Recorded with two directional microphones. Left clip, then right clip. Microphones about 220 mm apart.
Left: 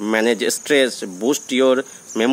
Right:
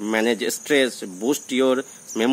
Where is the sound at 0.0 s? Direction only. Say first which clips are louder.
Left 4 dB; 10° left (ahead or behind).